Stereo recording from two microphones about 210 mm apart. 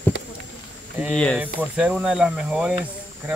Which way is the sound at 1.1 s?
5° left (ahead or behind).